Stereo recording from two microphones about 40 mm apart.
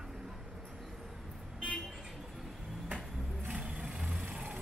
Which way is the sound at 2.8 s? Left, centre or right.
Right.